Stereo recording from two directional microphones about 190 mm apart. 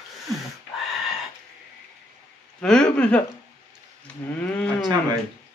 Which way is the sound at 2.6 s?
5° left (ahead or behind).